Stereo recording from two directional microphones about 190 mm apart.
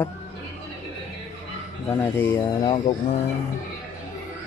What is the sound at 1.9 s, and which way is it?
Speech, 10° left (ahead or behind).